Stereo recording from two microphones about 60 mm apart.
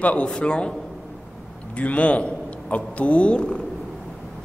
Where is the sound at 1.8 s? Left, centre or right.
Left.